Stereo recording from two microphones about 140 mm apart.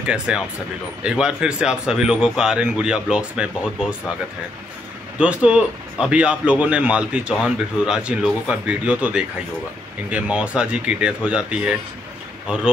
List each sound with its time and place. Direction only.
0.0 s a man's voice: 5° right (ahead or behind)
5.2 s speech: 10° right (ahead or behind)